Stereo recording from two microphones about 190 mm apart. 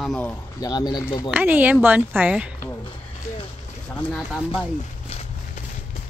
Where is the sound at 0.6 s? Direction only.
20° left (ahead or behind).